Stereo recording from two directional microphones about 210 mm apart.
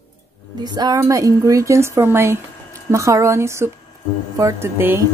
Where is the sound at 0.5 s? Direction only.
20° right (ahead or behind).